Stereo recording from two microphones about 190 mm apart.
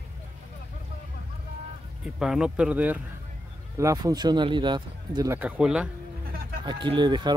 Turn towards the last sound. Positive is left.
turn(degrees=-25)  # may be behind; listen again after turning